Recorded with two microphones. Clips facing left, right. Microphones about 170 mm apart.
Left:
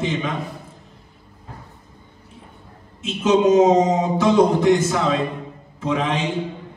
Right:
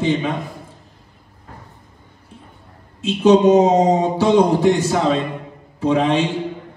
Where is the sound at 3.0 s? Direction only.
35° right (ahead or behind).